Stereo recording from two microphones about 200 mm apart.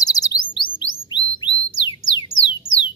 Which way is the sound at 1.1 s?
20° left (ahead or behind).